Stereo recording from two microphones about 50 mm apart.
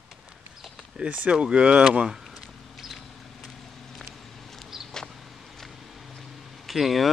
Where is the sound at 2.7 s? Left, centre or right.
Centre.